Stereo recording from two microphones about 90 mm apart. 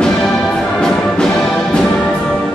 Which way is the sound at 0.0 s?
5° left (ahead or behind).